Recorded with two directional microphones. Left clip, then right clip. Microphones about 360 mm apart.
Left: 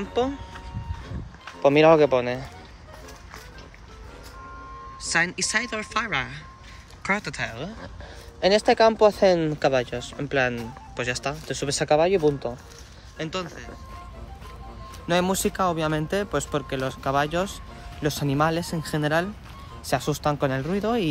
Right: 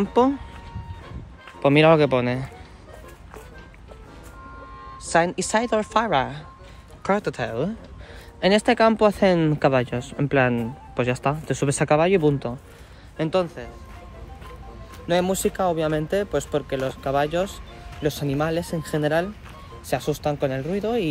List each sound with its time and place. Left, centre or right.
0.0 s speech: centre
1.6 s speech: right
5.1 s speech: centre
8.4 s speech: centre
13.2 s speech: centre
15.0 s speech: centre